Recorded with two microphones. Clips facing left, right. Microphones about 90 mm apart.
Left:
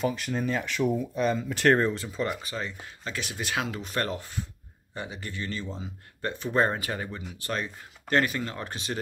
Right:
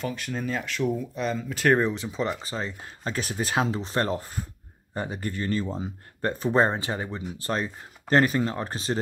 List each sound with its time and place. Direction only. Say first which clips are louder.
0.0 s speech: left 2 dB; centre (ahead or behind)
1.8 s speech: right 1 dB; 15° right (ahead or behind)
2.4 s speech: right 2 dB; 30° right (ahead or behind)
6.5 s speech: right 2 dB; 25° right (ahead or behind)